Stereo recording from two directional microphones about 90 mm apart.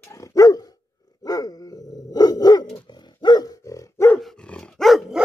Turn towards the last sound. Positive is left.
turn(degrees=0)  # may be behind; listen again after turning